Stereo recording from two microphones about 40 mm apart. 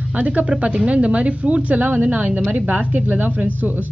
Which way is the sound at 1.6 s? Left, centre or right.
Right.